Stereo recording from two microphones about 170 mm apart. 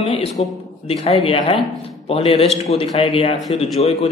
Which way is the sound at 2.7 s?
35° left (ahead or behind).